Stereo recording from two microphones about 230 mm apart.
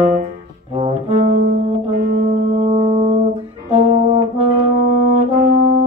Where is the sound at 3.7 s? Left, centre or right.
Right.